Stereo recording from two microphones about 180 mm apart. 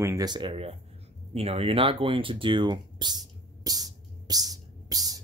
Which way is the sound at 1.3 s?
35° right (ahead or behind).